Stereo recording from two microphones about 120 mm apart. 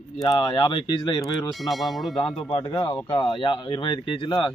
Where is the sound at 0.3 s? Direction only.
35° left (ahead or behind).